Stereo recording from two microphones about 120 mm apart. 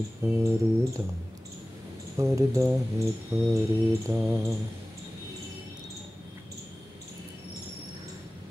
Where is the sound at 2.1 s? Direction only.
25° right (ahead or behind).